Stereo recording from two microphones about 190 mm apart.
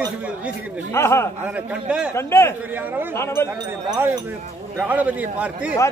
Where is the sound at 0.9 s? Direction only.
15° left (ahead or behind).